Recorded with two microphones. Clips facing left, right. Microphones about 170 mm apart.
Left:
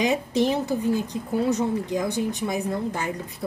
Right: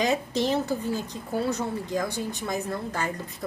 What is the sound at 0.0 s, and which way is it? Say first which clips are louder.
Speech: left 3 dB; 15° left (ahead or behind).